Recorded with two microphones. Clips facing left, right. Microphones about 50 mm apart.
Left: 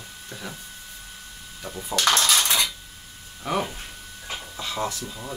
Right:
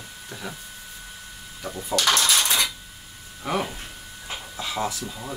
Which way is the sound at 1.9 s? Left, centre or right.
Left.